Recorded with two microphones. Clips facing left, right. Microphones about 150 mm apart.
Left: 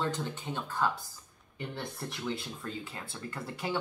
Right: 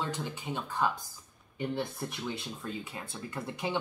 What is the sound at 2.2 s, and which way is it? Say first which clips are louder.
Speech: left 4 dB; 20° right (ahead or behind).